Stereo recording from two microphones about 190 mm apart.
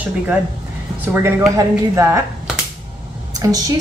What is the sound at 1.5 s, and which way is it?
Speech, 15° right (ahead or behind).